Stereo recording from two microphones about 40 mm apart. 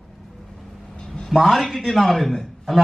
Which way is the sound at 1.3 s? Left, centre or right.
Centre.